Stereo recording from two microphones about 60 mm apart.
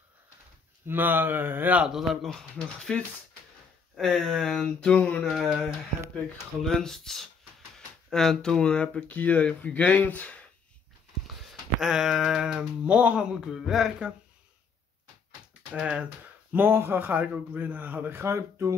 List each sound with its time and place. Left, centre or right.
0.8 s speech: right
2.2 s speech: centre
4.7 s speech: centre
5.3 s speech: centre
6.6 s speech: centre; by 10.4 s left
11.8 s a sound: centre
15.7 s a sound: centre
16.5 s speech: right
17.1 s a man's voice: right
18.1 s speech: right